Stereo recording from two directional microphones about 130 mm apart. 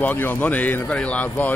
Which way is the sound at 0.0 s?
15° left (ahead or behind).